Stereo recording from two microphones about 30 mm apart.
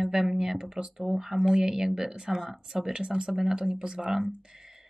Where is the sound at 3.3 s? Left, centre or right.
Centre.